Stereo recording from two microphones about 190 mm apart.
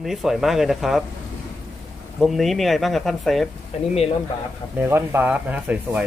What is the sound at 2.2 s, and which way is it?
Speech, centre (ahead or behind).